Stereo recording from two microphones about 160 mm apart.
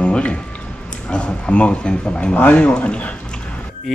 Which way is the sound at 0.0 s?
5° left (ahead or behind).